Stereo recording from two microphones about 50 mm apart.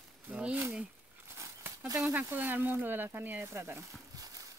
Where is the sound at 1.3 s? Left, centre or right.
Right.